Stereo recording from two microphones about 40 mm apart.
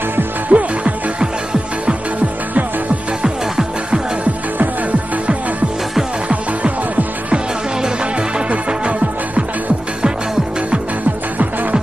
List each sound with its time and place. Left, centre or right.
0.5 s music: right
3.2 s music: right
8.5 s music: right